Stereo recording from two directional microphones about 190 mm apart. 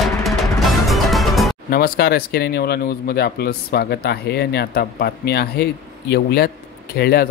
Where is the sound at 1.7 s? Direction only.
50° left (ahead or behind).